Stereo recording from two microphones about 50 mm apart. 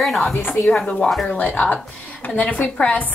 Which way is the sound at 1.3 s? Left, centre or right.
Left.